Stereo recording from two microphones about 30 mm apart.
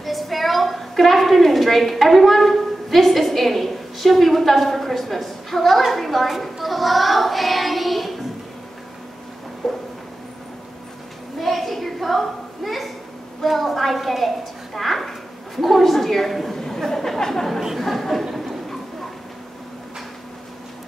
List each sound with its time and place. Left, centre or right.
0.0 s a woman's voice: centre
6.4 s child singing: centre
9.6 s speech: centre
11.4 s a sound: centre
12.6 s a woman's voice: centre
16.5 s a sound: centre
16.8 s a woman's voice: centre